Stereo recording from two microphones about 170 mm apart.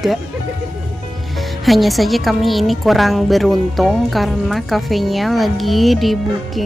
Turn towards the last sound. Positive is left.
turn(degrees=0)  # may be behind; listen again after turning